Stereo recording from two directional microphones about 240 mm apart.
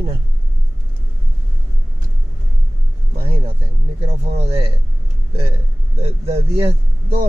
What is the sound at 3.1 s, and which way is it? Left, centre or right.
Speech, right.